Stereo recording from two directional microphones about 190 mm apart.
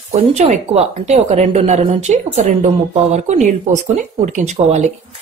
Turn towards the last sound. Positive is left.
turn(degrees=-35)  # may be behind; listen again after turning